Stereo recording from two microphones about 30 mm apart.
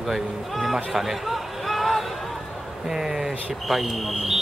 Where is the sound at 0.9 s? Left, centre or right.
Centre.